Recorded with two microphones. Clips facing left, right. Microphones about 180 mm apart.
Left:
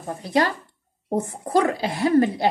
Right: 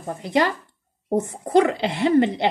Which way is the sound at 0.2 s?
20° right (ahead or behind).